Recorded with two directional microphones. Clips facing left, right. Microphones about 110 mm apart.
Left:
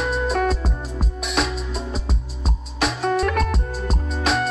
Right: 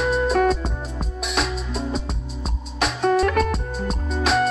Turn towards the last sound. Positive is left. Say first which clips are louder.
# right 2 dB
turn(degrees=0)  # may be behind; listen again after turning